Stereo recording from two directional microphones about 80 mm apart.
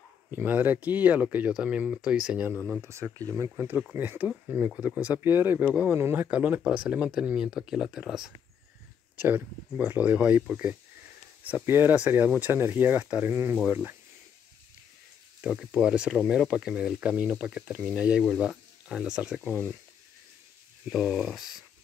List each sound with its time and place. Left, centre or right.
0.3 s speech: right
2.8 s speech: right
3.9 s speech: right
6.3 s speech: centre
9.1 s speech: right
13.2 s speech: right
15.4 s speech: centre
20.9 s speech: centre